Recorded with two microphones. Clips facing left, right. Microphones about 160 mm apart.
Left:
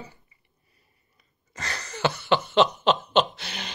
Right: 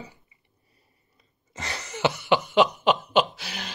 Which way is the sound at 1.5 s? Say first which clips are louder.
Right 1 dB; 20° right (ahead or behind).